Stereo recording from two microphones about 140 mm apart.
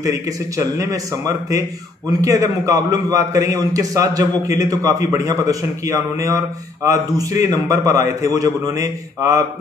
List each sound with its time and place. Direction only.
0.0 s a man's voice: 25° right (ahead or behind)